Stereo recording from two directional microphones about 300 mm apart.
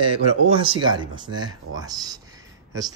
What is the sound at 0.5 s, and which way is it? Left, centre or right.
Speech, centre.